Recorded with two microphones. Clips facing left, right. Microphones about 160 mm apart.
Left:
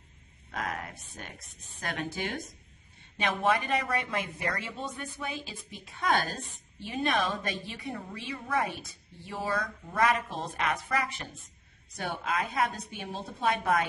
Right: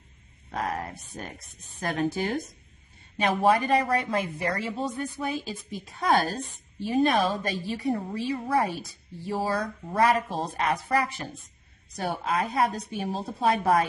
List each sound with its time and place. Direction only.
0.5 s a woman's voice: 35° right (ahead or behind)